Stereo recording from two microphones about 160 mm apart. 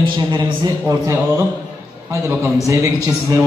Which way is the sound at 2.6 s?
20° right (ahead or behind).